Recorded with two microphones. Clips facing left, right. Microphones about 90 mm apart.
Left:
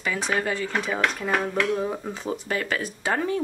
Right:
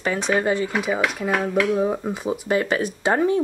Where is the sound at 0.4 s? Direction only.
25° right (ahead or behind).